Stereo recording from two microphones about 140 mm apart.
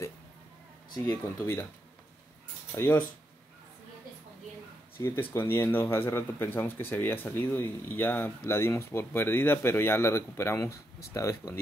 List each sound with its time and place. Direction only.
1.0 s speech: 15° left (ahead or behind)
2.7 s speech: 15° left (ahead or behind)
4.9 s speech: 15° left (ahead or behind)